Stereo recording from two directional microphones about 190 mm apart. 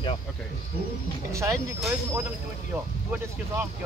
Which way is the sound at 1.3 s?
15° right (ahead or behind).